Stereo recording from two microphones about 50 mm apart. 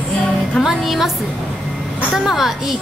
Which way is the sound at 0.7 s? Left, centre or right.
Centre.